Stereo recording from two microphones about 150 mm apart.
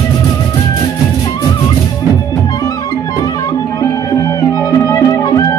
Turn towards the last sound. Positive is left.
turn(degrees=20)  # may be behind; listen again after turning